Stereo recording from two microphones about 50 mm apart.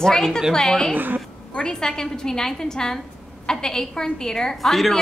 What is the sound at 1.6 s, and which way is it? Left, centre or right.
A woman's voice, centre.